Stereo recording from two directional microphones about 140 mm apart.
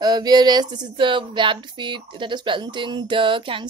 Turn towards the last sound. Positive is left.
turn(degrees=-35)  # may be behind; listen again after turning